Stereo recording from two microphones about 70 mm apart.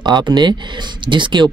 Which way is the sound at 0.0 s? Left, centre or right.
Right.